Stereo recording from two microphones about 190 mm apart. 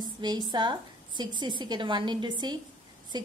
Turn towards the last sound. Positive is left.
turn(degrees=-20)  # may be behind; listen again after turning